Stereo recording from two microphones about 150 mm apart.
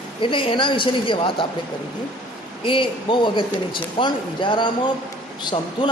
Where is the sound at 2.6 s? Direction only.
35° left (ahead or behind).